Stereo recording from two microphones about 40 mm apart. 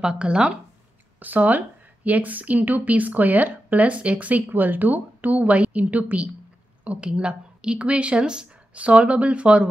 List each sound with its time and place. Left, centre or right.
0.0 s speech: right
1.2 s a woman's voice: right
8.7 s speech: right